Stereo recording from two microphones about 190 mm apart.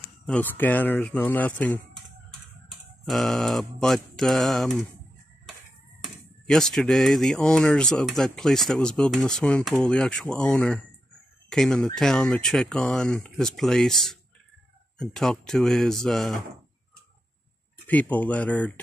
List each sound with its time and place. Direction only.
0.3 s speech: 10° left (ahead or behind)
3.1 s speech: centre (ahead or behind)
5.9 s speech: centre (ahead or behind)
17.8 s speech: 10° left (ahead or behind)